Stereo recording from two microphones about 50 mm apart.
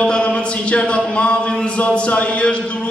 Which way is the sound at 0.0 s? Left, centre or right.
Left.